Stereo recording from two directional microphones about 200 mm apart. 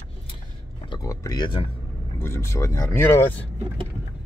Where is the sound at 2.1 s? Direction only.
15° left (ahead or behind).